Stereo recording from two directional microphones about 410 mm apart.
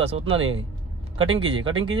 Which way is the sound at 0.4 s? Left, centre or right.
Right.